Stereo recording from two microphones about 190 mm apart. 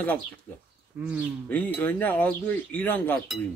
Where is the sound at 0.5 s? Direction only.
5° left (ahead or behind).